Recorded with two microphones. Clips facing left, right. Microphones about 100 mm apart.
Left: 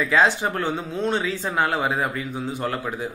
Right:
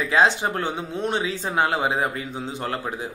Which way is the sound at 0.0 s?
20° right (ahead or behind).